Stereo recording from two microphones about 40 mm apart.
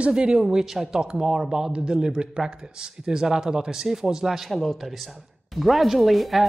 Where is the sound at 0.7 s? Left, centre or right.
Centre.